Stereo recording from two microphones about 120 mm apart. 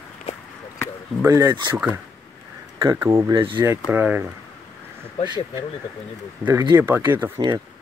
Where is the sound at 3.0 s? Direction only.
30° right (ahead or behind).